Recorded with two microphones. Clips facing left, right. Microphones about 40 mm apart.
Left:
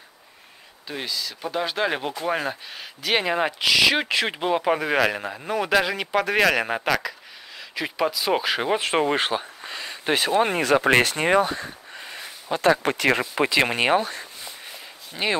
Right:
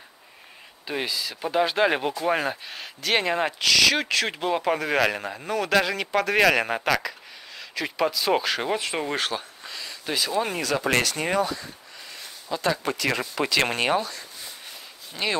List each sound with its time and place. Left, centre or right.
0.8 s speech: centre
8.7 s speech: left
13.2 s speech: centre
15.2 s speech: left